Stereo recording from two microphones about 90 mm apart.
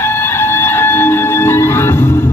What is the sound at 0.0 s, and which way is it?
Music, 25° left (ahead or behind).